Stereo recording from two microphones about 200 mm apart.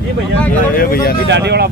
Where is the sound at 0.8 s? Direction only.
45° left (ahead or behind).